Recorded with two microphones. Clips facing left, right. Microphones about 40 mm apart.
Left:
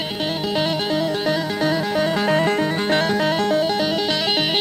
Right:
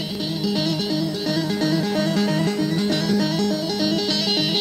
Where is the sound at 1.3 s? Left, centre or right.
Left.